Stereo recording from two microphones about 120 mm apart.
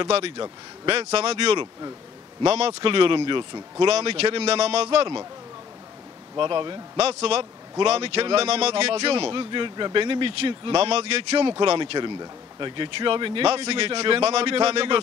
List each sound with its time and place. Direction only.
0.4 s a man's voice: 50° right (ahead or behind)
3.8 s speech: 55° right (ahead or behind)
4.8 s a man's voice: 45° right (ahead or behind)
6.3 s speech: 40° right (ahead or behind)
7.0 s a man's voice: 60° right (ahead or behind)
11.7 s a man's voice: 40° right (ahead or behind)